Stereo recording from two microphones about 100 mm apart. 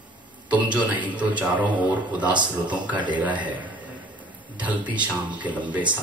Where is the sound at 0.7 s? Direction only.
15° right (ahead or behind).